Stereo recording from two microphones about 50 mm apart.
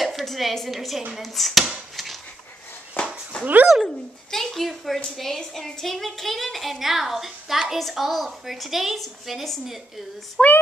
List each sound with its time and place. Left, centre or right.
0.0 s a woman's voice: centre
3.3 s speech: left
3.8 s speech: centre